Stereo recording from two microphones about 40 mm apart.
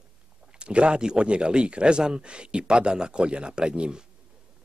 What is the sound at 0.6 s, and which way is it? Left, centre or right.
Speech, right.